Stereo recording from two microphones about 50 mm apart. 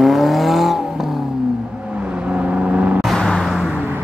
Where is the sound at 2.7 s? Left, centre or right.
Right.